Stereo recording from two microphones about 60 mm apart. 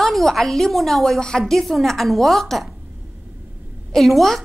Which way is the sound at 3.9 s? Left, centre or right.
Centre.